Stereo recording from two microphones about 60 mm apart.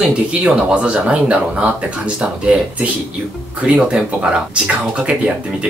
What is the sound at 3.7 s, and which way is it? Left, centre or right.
Speech, centre.